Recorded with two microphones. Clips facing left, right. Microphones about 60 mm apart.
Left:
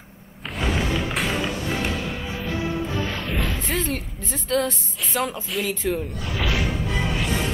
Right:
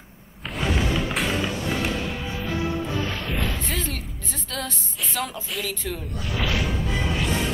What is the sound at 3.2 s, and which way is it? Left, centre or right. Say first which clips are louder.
Music: left 1 dB; centre.